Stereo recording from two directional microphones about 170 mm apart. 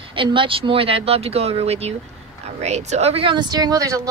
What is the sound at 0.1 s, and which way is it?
A woman's voice, 30° right (ahead or behind).